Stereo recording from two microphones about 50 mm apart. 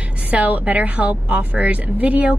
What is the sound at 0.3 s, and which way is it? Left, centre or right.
Speech, right.